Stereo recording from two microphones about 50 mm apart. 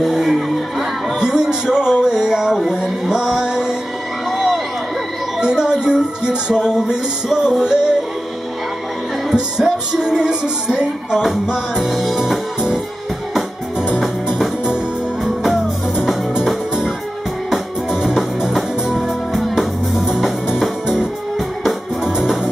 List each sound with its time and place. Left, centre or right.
0.0 s music: centre
1.2 s music: centre
4.3 s a sound: centre
5.4 s music: centre
9.3 s music: centre
11.8 s music: centre
13.9 s music: centre
18.4 s music: centre
20.8 s music: centre